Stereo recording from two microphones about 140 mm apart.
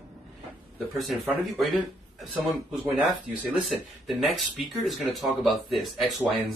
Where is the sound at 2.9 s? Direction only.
10° right (ahead or behind).